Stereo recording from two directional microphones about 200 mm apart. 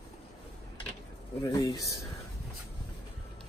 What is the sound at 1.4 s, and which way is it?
Speech, 20° left (ahead or behind).